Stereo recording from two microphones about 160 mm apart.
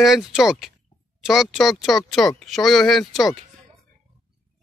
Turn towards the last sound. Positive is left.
turn(degrees=0)  # may be behind; listen again after turning